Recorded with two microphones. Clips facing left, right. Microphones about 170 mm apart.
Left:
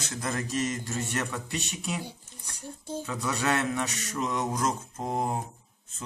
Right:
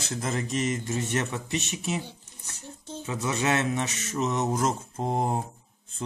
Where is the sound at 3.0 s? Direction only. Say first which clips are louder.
Right 3 dB; 20° right (ahead or behind).